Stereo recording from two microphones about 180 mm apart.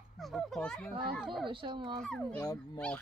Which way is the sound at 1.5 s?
25° right (ahead or behind).